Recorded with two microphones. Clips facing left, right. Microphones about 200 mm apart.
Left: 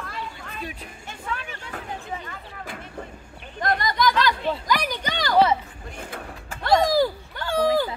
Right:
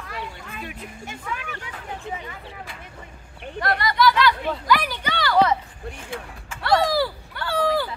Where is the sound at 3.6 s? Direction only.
60° right (ahead or behind).